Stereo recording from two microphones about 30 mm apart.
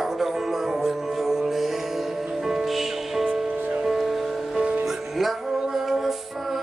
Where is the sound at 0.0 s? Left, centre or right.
Centre.